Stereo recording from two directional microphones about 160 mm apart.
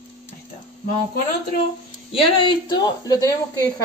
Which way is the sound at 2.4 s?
25° left (ahead or behind).